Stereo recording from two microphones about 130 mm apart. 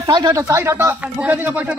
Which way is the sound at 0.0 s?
30° right (ahead or behind).